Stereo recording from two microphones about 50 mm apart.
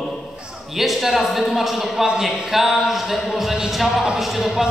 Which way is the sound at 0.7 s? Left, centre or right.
Centre.